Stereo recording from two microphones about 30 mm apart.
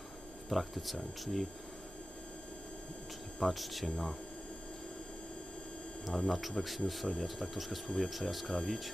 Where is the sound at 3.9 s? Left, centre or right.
Left.